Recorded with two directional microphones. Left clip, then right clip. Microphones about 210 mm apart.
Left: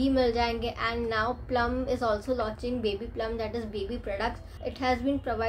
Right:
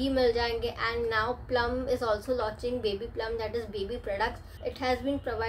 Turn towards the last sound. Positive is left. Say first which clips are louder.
# left 2 dB
turn(degrees=10)  # may be behind; listen again after turning